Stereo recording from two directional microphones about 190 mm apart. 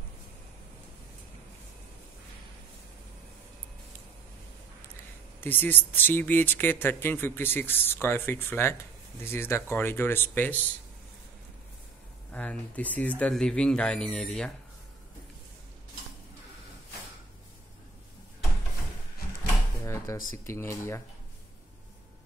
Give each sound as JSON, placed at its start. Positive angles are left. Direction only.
{"t": 5.4, "sound": "speech", "side_deg": 10}
{"t": 12.3, "sound": "speech", "side_deg": 5}
{"t": 19.4, "sound": "drawer open or close", "side_deg": 15}
{"t": 20.4, "sound": "speech", "side_deg": 15}